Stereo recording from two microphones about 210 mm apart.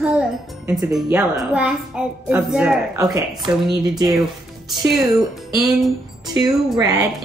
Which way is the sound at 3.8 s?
20° right (ahead or behind).